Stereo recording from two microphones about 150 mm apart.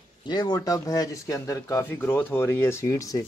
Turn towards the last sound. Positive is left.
turn(degrees=20)  # may be behind; listen again after turning